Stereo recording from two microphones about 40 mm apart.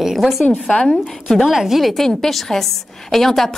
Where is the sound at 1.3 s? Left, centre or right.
Centre.